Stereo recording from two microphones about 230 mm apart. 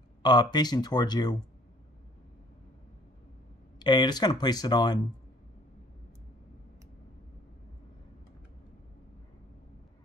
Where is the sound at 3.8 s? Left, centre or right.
Centre.